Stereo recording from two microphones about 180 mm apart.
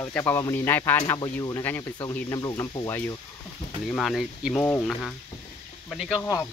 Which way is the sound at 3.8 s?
Centre (ahead or behind).